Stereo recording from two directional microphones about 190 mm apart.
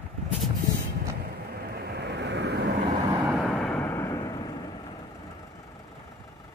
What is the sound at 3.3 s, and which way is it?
Vehicle, centre (ahead or behind).